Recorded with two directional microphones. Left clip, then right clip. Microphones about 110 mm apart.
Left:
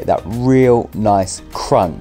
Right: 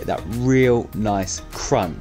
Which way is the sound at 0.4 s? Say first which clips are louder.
Left 4 dB; 40° left (ahead or behind).